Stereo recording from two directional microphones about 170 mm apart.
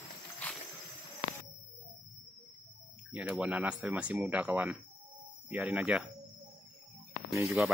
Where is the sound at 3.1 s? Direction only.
5° right (ahead or behind).